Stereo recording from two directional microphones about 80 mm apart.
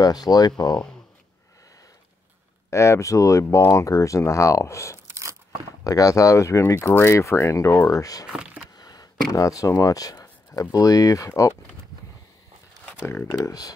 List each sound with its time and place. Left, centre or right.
0.0 s speech: left
2.7 s speech: left
4.9 s a sound: right
5.9 s speech: left
8.7 s a sound: left
9.3 s speech: left
13.0 s speech: left
13.5 s speech: left